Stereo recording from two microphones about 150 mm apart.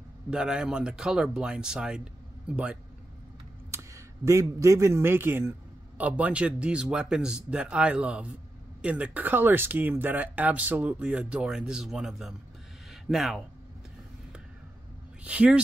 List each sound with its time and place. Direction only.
0.3 s speech: 5° right (ahead or behind)
3.7 s speech: 20° right (ahead or behind); by 13.4 s centre (ahead or behind)
15.2 s speech: 10° right (ahead or behind)